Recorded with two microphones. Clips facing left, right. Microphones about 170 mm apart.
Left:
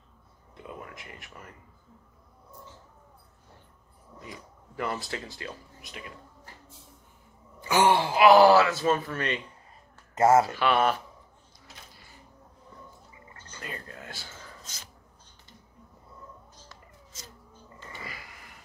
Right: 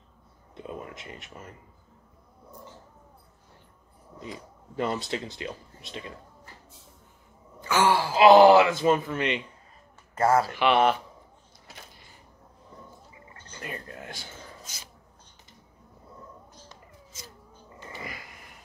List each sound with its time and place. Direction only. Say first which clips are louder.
0.6 s speech: right 4 dB; 20° right (ahead or behind)
4.2 s speech: right 5 dB; 20° right (ahead or behind)
7.6 s wail: left 1 dB; 20° left (ahead or behind)
8.2 s speech: right 3 dB; 25° right (ahead or behind)
10.1 s speech: left 2 dB; 20° left (ahead or behind)
10.5 s speech: right 3 dB; 15° right (ahead or behind)
13.5 s a sound: right 2 dB; 25° right (ahead or behind); by 14.9 s 10° right (ahead or behind)
17.7 s cat: right 3 dB; 20° right (ahead or behind)